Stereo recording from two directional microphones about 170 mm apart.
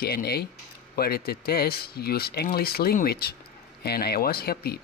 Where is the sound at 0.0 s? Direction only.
65° left (ahead or behind).